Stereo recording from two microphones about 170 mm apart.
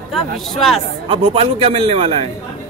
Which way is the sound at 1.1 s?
35° right (ahead or behind).